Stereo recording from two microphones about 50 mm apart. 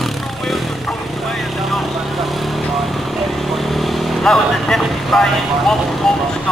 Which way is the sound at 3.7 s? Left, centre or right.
Centre.